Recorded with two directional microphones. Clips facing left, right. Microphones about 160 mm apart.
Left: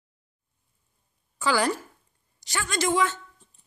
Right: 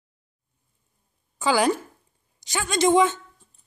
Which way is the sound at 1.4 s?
15° right (ahead or behind).